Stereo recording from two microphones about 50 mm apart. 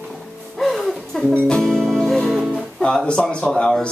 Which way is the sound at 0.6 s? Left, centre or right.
Centre.